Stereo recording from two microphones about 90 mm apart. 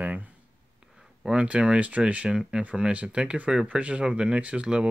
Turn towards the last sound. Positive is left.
turn(degrees=-10)  # may be behind; listen again after turning